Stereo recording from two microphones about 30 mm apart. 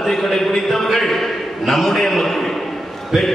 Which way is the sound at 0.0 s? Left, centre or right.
Centre.